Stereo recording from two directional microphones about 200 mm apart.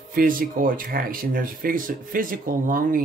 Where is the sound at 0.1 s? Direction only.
45° right (ahead or behind).